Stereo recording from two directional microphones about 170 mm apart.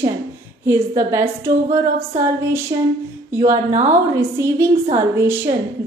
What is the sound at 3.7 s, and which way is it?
Speech, 45° right (ahead or behind).